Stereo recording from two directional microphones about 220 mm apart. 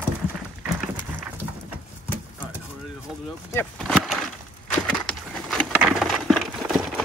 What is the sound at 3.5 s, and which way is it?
Vehicle, 5° left (ahead or behind).